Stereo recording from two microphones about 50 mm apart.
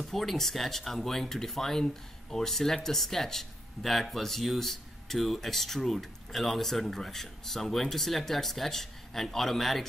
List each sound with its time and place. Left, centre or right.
0.0 s speech: centre